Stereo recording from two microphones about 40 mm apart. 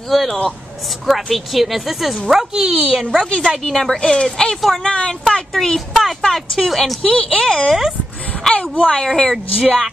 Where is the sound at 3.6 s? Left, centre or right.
Centre.